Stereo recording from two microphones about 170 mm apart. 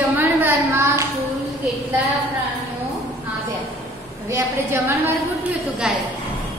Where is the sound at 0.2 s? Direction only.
15° right (ahead or behind).